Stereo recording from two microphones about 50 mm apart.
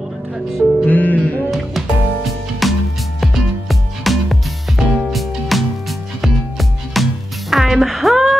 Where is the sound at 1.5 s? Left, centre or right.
Centre.